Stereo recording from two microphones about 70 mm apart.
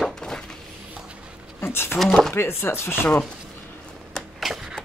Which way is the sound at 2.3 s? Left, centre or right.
Left.